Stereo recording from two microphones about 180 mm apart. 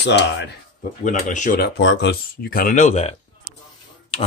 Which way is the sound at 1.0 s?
45° left (ahead or behind).